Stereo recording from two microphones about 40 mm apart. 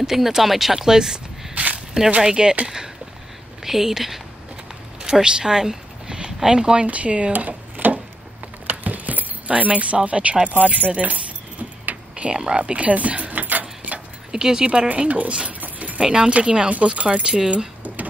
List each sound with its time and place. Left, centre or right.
0.0 s speech: centre
1.5 s walk: right
2.2 s speech: right
3.6 s speech: centre
5.2 s speech: centre
6.9 s speech: right
7.3 s drawer open or close: right
8.6 s speech: right
11.8 s a sound: right
12.3 s keys jangling: right
14.3 s speech: centre; by 15.3 s right
15.6 s keys jangling: right
16.0 s speech: right